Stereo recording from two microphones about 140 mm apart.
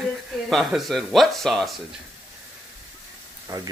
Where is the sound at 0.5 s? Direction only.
Centre (ahead or behind).